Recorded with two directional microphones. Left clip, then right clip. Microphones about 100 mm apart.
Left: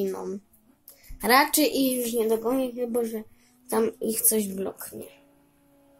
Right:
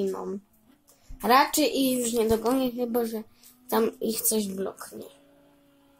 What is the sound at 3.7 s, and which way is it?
Speech, centre (ahead or behind).